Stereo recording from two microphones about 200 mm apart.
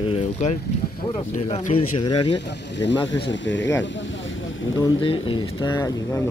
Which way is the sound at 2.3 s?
60° left (ahead or behind).